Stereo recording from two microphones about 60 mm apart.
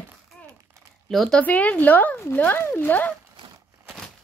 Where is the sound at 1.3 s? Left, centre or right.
Left.